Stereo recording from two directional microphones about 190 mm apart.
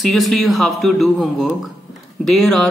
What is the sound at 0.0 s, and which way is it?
Speech, centre (ahead or behind).